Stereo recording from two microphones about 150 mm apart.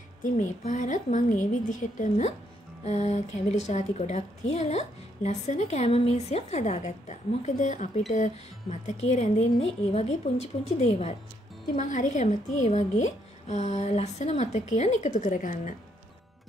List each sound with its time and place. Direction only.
0.2 s a woman's voice: 55° left (ahead or behind)
11.7 s a woman's voice: 55° left (ahead or behind)